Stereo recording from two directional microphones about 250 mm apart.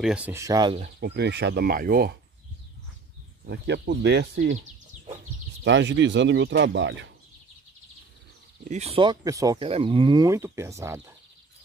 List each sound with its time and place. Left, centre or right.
0.0 s speech: centre
0.9 s speech: right
3.4 s speech: right
5.6 s speech: right
8.6 s speech: right